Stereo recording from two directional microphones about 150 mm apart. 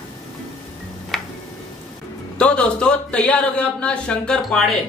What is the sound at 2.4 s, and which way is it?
A man's voice, 5° left (ahead or behind).